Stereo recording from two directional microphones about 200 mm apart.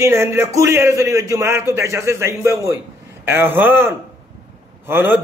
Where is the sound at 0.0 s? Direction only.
15° right (ahead or behind).